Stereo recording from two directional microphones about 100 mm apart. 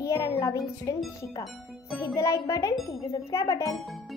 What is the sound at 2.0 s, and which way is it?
A child's voice, 30° left (ahead or behind).